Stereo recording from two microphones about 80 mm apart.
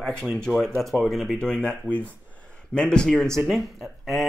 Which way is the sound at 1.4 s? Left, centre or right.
Centre.